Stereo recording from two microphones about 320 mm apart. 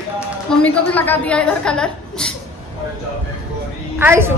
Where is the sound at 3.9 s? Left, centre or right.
Centre.